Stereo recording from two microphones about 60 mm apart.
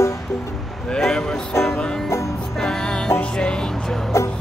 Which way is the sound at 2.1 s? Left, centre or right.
Left.